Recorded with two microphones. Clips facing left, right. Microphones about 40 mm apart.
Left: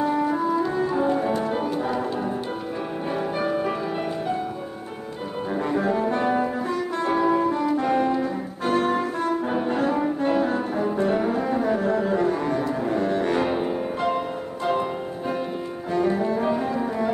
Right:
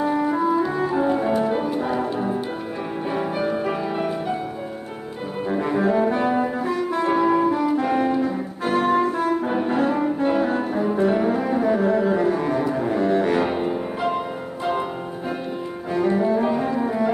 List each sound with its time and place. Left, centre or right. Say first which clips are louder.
0.0 s music: right 2 dB; centre
3.3 s music: right 1 dB; centre
5.5 s saxophone: right 3 dB; centre
15.9 s cello: right 3 dB; centre